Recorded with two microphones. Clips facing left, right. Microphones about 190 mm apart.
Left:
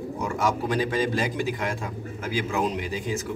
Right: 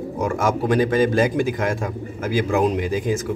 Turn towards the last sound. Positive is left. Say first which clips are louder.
# right 7 dB
turn(degrees=-50)  # may be behind; listen again after turning